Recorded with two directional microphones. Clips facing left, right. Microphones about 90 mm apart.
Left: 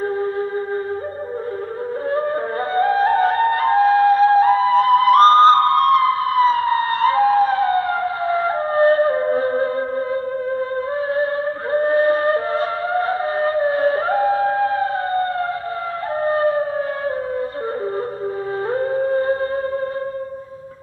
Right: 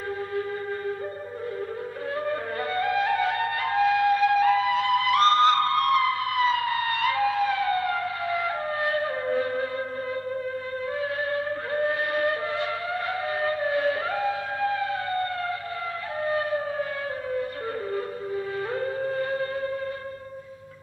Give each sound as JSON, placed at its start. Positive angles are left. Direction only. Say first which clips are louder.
{"t": 2.1, "sound": "flute", "louder": "left 6 dB", "side_deg": 35}
{"t": 11.7, "sound": "a sound", "louder": "left 11 dB", "side_deg": 35}
{"t": 16.2, "sound": "siren", "louder": "left 8 dB", "side_deg": 40}
{"t": 18.7, "sound": "music", "louder": "left 12 dB", "side_deg": 35}